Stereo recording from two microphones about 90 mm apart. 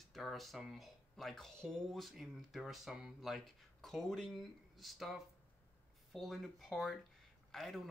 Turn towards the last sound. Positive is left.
turn(degrees=5)  # may be behind; listen again after turning